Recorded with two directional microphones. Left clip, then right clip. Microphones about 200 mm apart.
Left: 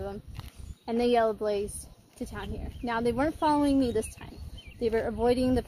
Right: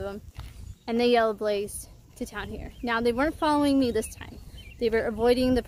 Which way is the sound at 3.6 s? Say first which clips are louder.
Right 2 dB; 5° right (ahead or behind).